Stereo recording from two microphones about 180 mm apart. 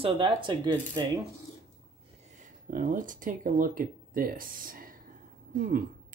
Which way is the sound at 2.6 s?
50° right (ahead or behind).